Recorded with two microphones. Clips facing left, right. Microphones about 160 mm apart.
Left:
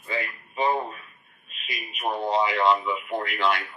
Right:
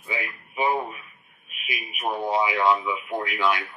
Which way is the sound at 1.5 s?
10° right (ahead or behind).